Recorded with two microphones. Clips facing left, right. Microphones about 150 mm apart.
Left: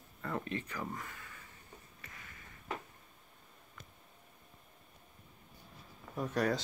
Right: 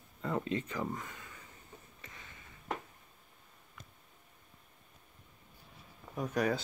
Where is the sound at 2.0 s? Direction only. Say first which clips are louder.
Right 1 dB; 20° right (ahead or behind).